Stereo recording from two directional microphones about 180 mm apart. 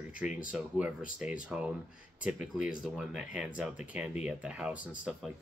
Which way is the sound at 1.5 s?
5° right (ahead or behind).